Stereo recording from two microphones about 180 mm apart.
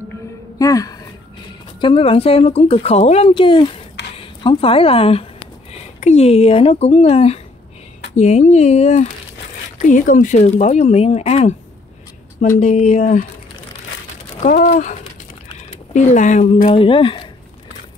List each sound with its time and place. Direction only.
0.6 s speech: 20° left (ahead or behind)
1.8 s a woman's voice: 30° left (ahead or behind)
14.4 s speech: 50° left (ahead or behind)
16.7 s speech: 30° left (ahead or behind)